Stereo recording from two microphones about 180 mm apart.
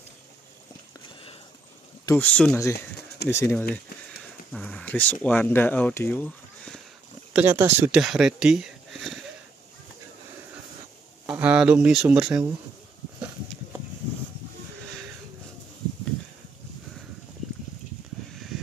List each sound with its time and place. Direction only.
2.1 s speech: 5° left (ahead or behind)
7.3 s speech: 10° right (ahead or behind)
11.3 s speech: 5° right (ahead or behind)